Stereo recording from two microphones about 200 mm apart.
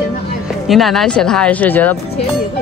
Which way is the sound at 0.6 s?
Centre (ahead or behind).